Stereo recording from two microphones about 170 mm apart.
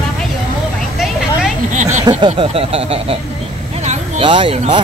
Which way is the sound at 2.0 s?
30° right (ahead or behind).